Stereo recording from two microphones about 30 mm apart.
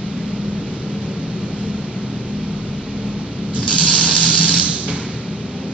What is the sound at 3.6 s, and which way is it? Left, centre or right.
Ratchet, left.